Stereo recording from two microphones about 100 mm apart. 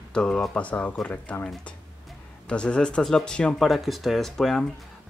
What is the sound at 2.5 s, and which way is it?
Speech, 10° left (ahead or behind).